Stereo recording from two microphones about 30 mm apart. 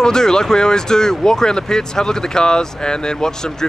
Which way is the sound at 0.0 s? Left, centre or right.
Left.